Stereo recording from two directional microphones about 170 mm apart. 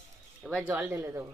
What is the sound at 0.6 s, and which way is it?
Speech, 15° right (ahead or behind).